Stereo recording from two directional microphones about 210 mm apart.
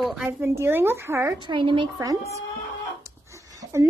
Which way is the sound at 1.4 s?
20° right (ahead or behind).